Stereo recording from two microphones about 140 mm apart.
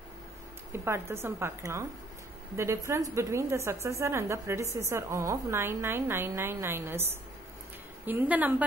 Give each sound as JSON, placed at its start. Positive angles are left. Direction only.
{"t": 0.8, "sound": "a woman's voice", "side_deg": -20}